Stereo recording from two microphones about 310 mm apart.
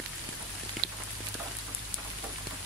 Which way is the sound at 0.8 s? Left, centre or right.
Right.